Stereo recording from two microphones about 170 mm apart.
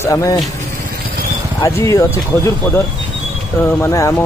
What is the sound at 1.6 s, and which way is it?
A man's voice, 15° left (ahead or behind).